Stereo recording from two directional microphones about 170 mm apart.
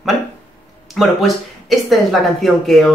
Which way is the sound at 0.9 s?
Centre (ahead or behind).